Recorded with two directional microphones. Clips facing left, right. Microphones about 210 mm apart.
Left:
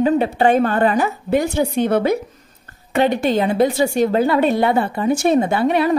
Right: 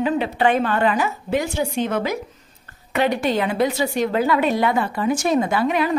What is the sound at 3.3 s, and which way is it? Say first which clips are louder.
Speech: left 4 dB; 25° left (ahead or behind).